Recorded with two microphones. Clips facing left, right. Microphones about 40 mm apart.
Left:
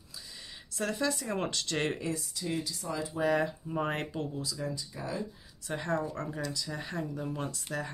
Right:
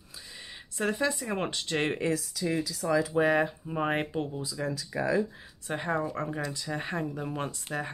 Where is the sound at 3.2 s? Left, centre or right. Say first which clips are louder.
Right 4 dB; right.